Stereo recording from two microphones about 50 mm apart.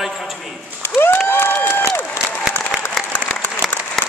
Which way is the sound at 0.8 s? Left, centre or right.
Left.